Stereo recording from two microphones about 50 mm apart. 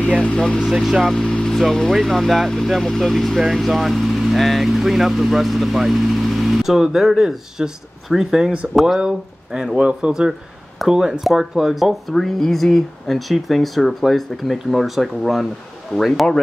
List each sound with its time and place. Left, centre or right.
0.2 s speech: centre
0.6 s speech: centre
1.2 s vehicle: centre
1.5 s speech: centre
9.0 s speech: centre
10.9 s speech: centre